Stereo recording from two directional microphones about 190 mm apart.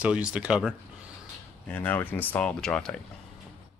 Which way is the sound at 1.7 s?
10° left (ahead or behind).